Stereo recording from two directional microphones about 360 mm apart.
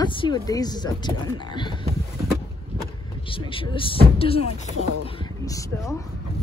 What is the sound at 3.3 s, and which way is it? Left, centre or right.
Speech, centre.